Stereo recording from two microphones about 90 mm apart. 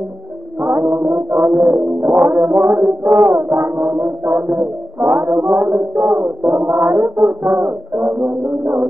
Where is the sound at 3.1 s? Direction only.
40° right (ahead or behind).